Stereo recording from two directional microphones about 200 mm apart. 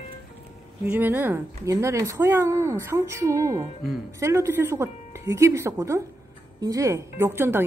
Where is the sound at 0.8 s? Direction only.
10° right (ahead or behind).